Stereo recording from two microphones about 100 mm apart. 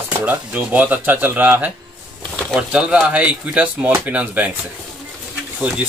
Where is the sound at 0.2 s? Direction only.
15° right (ahead or behind).